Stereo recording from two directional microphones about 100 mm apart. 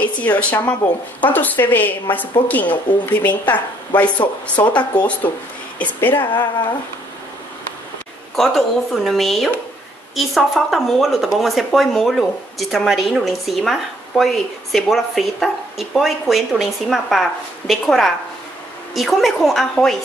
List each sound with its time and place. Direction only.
0.0 s a woman's voice: 15° left (ahead or behind)
8.4 s a woman's voice: centre (ahead or behind)